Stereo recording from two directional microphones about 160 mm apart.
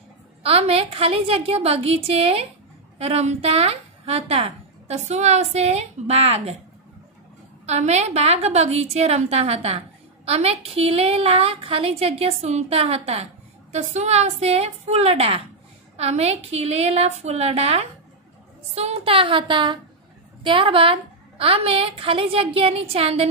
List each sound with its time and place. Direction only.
0.4 s a woman's voice: 40° right (ahead or behind)
7.6 s a woman's voice: 45° right (ahead or behind)